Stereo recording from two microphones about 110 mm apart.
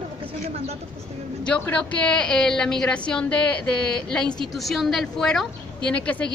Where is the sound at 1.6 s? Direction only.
10° left (ahead or behind).